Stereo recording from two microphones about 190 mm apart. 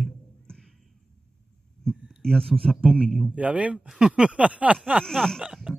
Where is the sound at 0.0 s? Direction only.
5° left (ahead or behind).